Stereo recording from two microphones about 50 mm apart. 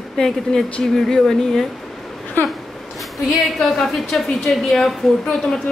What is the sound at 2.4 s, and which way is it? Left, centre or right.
Speech, left.